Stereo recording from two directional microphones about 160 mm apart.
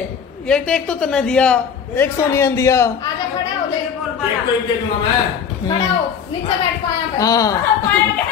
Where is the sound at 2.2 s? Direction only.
15° left (ahead or behind).